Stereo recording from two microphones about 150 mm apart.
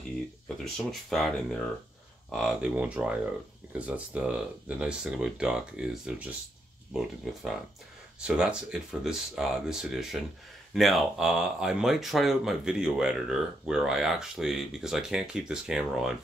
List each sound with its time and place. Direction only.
0.7 s speech: centre (ahead or behind)